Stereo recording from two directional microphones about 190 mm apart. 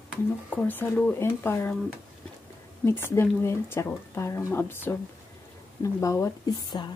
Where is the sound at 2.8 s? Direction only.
10° left (ahead or behind).